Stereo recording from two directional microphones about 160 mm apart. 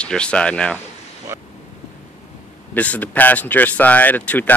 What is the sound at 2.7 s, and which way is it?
Speech, 10° left (ahead or behind).